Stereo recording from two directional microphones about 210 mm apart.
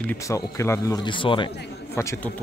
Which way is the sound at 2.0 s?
10° left (ahead or behind).